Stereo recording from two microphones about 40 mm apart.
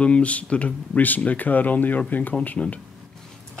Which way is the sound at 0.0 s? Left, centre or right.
Left.